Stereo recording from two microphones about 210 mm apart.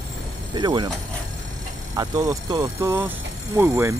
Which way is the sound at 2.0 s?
15° right (ahead or behind).